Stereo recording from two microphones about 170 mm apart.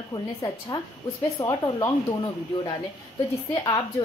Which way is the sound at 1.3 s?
20° left (ahead or behind).